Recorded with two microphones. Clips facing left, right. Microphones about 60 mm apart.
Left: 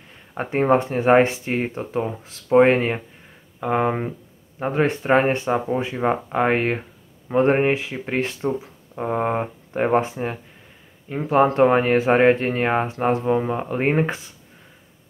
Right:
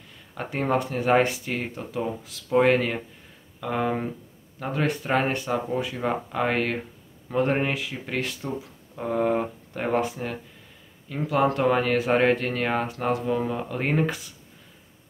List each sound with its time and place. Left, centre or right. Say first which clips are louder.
0.3 s speech: left 7 dB; left